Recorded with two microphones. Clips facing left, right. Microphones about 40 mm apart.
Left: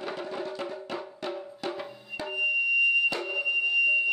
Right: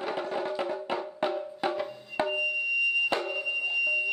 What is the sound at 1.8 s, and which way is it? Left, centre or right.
Music, centre.